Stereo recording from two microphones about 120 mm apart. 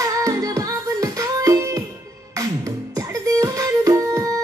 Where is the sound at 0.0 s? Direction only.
30° right (ahead or behind).